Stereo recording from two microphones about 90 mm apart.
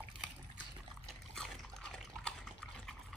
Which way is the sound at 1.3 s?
5° left (ahead or behind).